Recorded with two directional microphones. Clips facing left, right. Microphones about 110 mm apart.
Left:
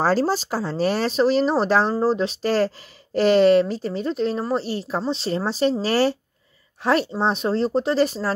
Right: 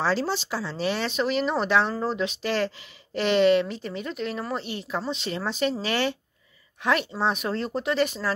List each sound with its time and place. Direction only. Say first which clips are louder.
0.0 s speech: left 5 dB; 45° left (ahead or behind)